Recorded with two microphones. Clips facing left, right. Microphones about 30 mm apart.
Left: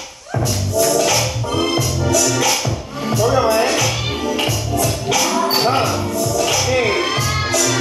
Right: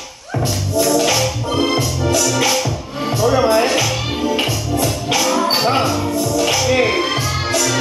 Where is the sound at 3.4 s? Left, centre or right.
Centre.